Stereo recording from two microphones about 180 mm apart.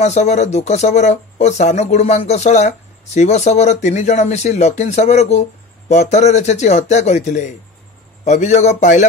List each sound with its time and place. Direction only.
0.0 s speech: 40° left (ahead or behind)